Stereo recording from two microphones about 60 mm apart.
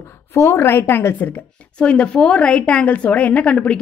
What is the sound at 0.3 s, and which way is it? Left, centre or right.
A woman's voice, left.